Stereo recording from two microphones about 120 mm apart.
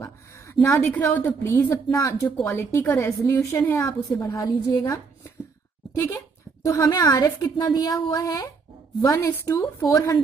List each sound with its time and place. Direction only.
0.0 s a woman's voice: 25° left (ahead or behind)